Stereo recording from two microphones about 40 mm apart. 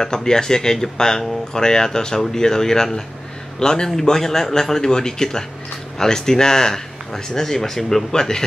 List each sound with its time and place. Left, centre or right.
0.0 s speech: centre